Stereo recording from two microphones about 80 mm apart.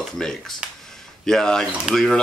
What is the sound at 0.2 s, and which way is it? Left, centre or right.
Speech, centre.